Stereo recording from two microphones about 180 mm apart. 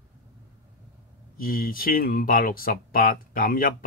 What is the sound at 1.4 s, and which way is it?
Speech, 55° left (ahead or behind).